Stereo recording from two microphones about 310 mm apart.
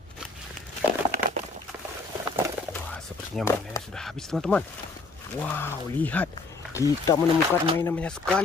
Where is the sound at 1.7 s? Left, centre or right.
Centre.